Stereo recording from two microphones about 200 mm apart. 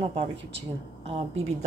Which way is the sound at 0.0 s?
25° right (ahead or behind).